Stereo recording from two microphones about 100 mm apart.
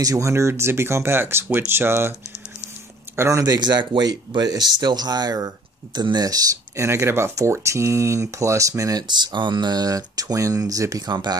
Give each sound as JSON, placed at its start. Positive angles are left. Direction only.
{"t": 0.0, "sound": "speech", "side_deg": -35}
{"t": 3.2, "sound": "speech", "side_deg": -30}
{"t": 9.0, "sound": "speech", "side_deg": -50}